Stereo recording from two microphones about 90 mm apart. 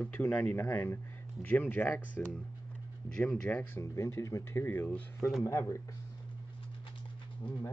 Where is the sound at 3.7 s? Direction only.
35° left (ahead or behind).